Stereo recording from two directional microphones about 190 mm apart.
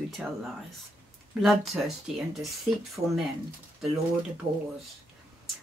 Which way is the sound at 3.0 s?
25° right (ahead or behind).